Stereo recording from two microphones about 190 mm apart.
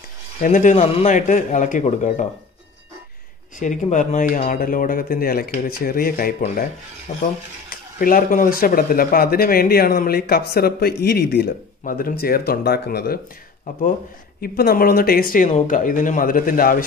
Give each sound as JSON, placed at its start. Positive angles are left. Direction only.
{"t": 0.4, "sound": "a man's voice", "side_deg": 45}
{"t": 3.5, "sound": "a man's voice", "side_deg": 40}
{"t": 7.1, "sound": "a man's voice", "side_deg": 35}
{"t": 7.7, "sound": "speech", "side_deg": 50}
{"t": 14.4, "sound": "speech", "side_deg": 50}